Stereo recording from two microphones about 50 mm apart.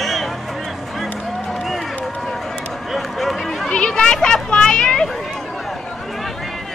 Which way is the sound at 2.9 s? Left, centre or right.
Centre.